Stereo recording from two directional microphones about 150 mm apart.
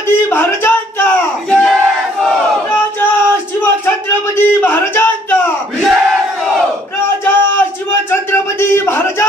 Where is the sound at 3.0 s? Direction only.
15° left (ahead or behind).